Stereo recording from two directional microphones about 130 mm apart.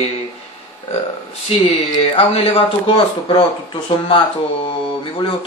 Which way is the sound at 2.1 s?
50° left (ahead or behind).